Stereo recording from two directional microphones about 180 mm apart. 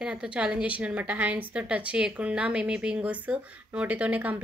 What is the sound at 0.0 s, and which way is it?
A woman's voice, 5° right (ahead or behind).